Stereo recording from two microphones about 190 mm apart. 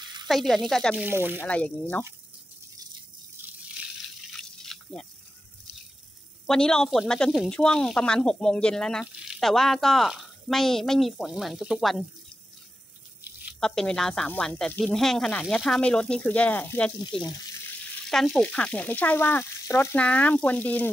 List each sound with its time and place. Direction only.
0.0 s sizzle: 25° right (ahead or behind)
0.3 s speech: centre (ahead or behind)
1.0 s speech: 10° right (ahead or behind)
1.4 s speech: 5° left (ahead or behind)
4.4 s drip: 5° left (ahead or behind)
6.4 s speech: 5° left (ahead or behind)
13.6 s speech: 5° left (ahead or behind)
17.0 s speech: 25° left (ahead or behind)
18.1 s speech: centre (ahead or behind)